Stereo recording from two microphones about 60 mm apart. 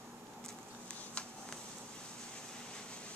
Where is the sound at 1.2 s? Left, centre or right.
Centre.